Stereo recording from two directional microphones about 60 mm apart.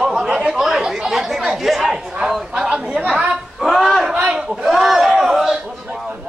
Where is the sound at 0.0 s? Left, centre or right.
Centre.